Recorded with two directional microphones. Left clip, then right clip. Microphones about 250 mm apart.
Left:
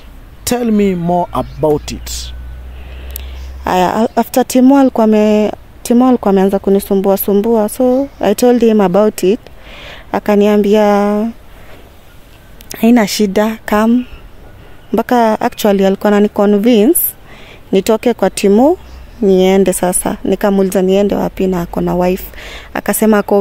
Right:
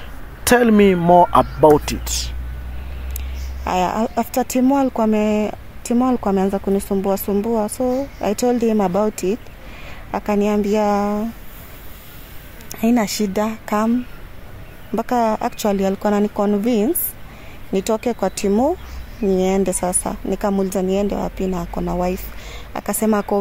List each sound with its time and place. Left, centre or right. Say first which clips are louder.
0.5 s speech: right 1 dB; left
2.1 s speech: even; centre
3.6 s speech: left 7 dB; left
12.6 s speech: left 8 dB; left